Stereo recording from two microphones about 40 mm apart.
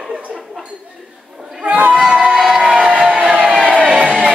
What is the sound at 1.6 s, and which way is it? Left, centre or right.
Speech, right.